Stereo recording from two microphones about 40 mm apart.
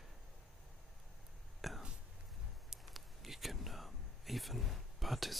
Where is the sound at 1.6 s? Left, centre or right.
Centre.